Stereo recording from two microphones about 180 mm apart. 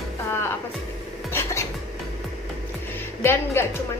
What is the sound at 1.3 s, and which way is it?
Music, 15° left (ahead or behind).